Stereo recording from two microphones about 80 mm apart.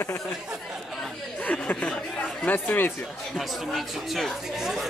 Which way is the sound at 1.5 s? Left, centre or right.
Centre.